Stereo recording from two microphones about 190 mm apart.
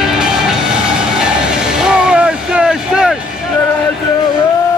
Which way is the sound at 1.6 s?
5° right (ahead or behind).